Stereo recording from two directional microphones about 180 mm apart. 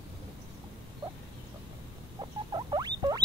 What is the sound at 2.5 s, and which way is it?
Rodents, 25° right (ahead or behind).